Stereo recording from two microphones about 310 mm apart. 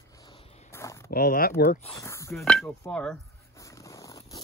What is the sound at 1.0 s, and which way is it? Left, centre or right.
Speech, left.